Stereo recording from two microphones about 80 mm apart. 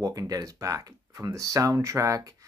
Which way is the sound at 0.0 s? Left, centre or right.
Right.